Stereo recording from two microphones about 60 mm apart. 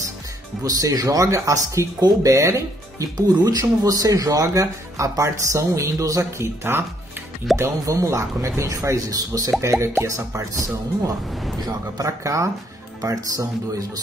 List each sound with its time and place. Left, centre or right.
0.7 s speech: right
7.5 s speech: centre
7.8 s speech: right
9.6 s speech: right
13.0 s speech: right